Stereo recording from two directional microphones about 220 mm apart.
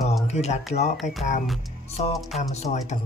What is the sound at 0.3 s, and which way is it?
Speech, 30° left (ahead or behind).